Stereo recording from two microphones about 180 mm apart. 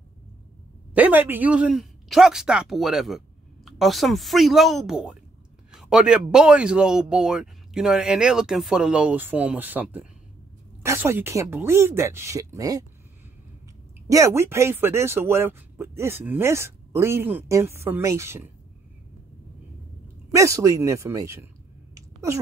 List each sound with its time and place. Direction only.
0.9 s speech: 10° right (ahead or behind)
14.0 s speech: 15° right (ahead or behind)
20.2 s speech: 15° right (ahead or behind)